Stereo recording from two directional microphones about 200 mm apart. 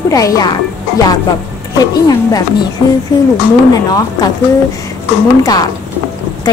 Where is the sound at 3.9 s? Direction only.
15° left (ahead or behind).